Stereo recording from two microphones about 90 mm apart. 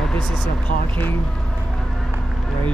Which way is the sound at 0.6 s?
20° left (ahead or behind).